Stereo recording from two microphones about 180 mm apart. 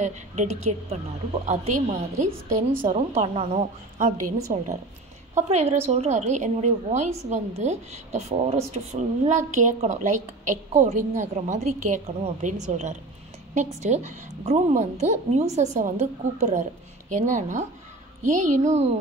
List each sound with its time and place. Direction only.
0.0 s a woman's voice: 40° right (ahead or behind)